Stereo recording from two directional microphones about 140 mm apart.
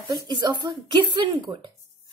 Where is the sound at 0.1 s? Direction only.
30° right (ahead or behind).